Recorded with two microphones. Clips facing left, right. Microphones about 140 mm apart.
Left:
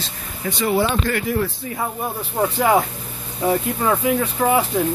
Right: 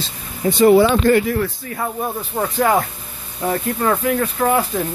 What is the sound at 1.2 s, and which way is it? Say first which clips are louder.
Speech: right 1 dB; 10° left (ahead or behind).